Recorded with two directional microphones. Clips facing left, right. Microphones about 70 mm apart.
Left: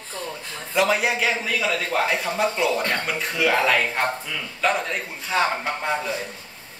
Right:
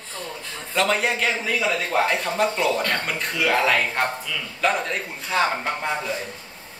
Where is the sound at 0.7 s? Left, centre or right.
Centre.